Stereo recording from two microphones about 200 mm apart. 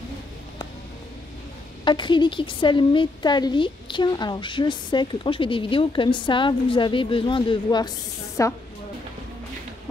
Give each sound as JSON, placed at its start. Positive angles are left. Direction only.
{"t": 1.9, "sound": "a woman's voice", "side_deg": 25}